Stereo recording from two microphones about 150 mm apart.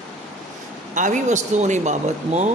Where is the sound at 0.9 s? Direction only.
55° right (ahead or behind).